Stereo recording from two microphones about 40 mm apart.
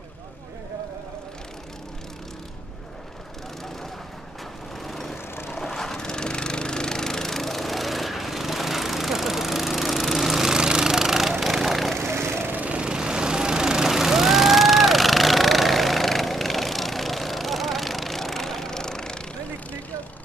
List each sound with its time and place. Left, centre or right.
4.8 s lawn mower: centre
12.0 s vehicle: right
12.6 s vehicle: right; by 19.1 s centre